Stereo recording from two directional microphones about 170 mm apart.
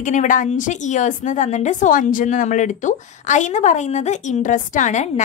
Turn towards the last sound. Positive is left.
turn(degrees=45)  # may be behind; listen again after turning